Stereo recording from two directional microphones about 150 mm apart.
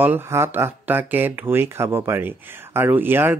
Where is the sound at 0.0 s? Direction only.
15° right (ahead or behind).